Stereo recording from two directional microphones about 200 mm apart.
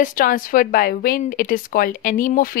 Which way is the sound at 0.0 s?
45° left (ahead or behind).